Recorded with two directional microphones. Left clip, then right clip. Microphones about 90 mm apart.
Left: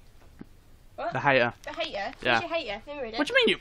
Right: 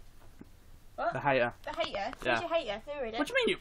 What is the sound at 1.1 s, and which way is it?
Speech, 55° left (ahead or behind).